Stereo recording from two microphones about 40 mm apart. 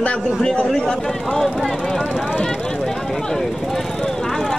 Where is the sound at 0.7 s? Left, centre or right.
Centre.